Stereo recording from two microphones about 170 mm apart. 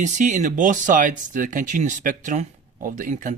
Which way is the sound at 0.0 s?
45° right (ahead or behind).